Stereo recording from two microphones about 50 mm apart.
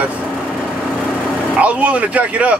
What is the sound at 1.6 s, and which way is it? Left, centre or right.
Speech, right.